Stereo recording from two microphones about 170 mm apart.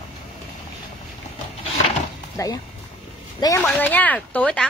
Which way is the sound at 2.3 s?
20° left (ahead or behind).